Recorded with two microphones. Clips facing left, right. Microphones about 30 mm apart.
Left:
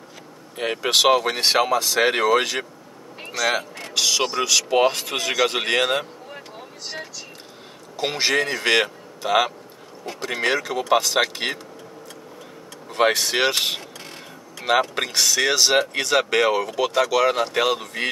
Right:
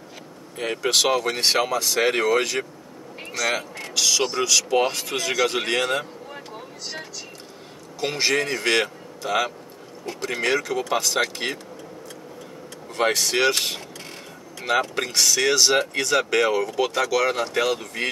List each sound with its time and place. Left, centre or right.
0.6 s speech: centre
6.3 s vehicle: centre
8.0 s speech: centre
12.9 s speech: centre